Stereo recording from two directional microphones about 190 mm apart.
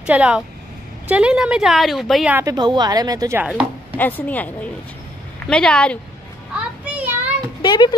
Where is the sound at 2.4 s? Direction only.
20° right (ahead or behind).